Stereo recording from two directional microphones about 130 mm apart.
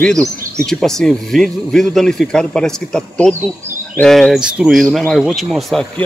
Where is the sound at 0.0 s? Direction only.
5° left (ahead or behind).